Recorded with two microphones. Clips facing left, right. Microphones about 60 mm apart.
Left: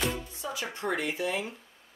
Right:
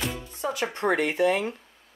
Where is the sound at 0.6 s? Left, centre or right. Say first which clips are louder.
Right 7 dB; right.